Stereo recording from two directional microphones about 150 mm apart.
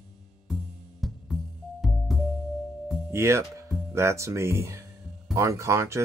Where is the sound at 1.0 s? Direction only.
Centre (ahead or behind).